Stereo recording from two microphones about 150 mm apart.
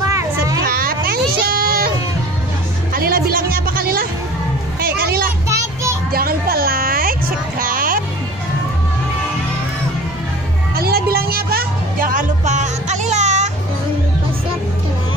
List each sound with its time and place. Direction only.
0.7 s baby cry: 80° right
2.9 s music: 80° right
4.7 s hubbub: 85° right
5.5 s a sound: 20° right (ahead or behind)
6.1 s a sound: 80° right
10.8 s music: 90° right; by 13.5 s 50° right (ahead or behind)